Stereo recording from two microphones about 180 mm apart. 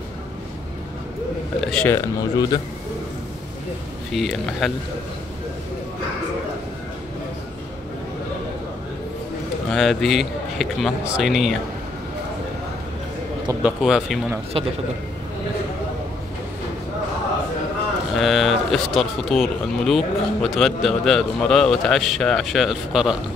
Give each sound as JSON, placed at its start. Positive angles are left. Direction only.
{"t": 1.6, "sound": "speech", "side_deg": 5}
{"t": 2.0, "sound": "speech", "side_deg": 20}
{"t": 4.1, "sound": "speech", "side_deg": 0}
{"t": 9.7, "sound": "speech", "side_deg": 0}
{"t": 13.6, "sound": "speech", "side_deg": -5}
{"t": 18.1, "sound": "speech", "side_deg": 0}